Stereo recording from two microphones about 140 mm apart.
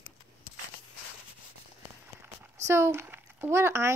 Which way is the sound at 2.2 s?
15° right (ahead or behind).